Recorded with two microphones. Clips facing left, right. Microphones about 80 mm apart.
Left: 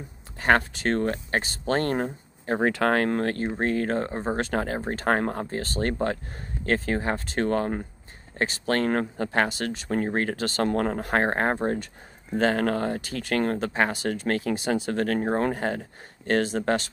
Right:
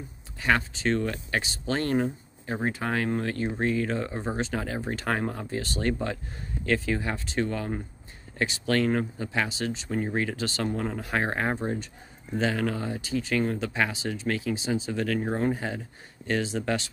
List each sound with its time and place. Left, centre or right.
0.4 s speech: left
2.6 s speech: left
2.9 s speech: left
4.4 s speech: left